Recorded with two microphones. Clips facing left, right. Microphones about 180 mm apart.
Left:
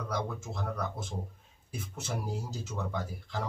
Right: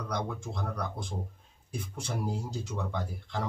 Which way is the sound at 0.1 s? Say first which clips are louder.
Right 1 dB; 5° left (ahead or behind).